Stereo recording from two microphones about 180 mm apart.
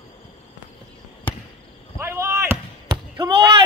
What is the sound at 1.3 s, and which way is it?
Basketball bounce, 10° left (ahead or behind).